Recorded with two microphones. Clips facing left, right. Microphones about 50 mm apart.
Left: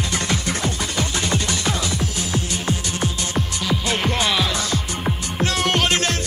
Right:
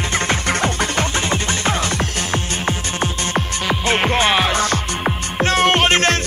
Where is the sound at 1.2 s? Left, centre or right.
Right.